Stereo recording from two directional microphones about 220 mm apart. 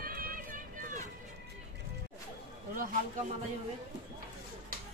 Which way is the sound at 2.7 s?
40° right (ahead or behind).